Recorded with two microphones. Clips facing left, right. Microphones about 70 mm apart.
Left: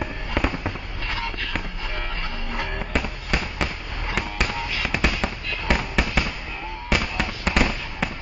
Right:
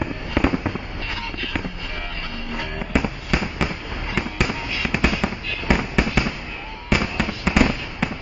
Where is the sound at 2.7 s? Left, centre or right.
Centre.